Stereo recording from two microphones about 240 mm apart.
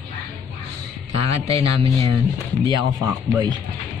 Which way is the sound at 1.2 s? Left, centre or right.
Right.